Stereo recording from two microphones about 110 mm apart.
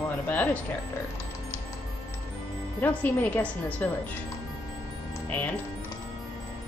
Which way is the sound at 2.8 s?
15° left (ahead or behind).